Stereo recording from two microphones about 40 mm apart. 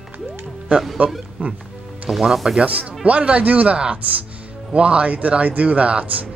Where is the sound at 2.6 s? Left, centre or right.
Right.